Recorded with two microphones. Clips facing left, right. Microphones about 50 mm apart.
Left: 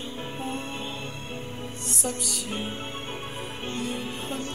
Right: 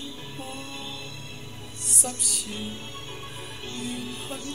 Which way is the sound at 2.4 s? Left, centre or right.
Left.